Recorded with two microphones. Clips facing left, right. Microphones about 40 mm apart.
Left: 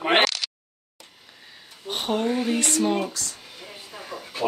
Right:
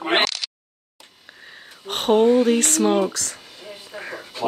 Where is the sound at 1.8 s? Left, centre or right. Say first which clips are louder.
Right 9 dB; right.